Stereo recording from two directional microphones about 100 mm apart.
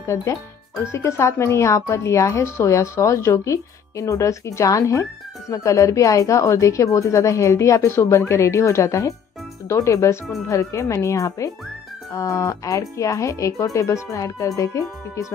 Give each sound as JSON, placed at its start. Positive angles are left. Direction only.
{"t": 0.0, "sound": "a woman's voice", "side_deg": 30}